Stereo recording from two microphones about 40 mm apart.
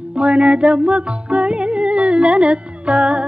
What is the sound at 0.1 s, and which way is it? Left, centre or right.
Music, right.